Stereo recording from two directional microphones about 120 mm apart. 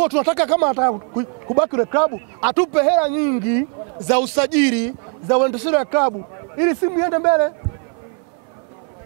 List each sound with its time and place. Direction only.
0.0 s speech: 15° right (ahead or behind)